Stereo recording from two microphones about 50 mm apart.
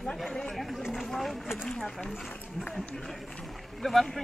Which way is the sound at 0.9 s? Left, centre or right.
Centre.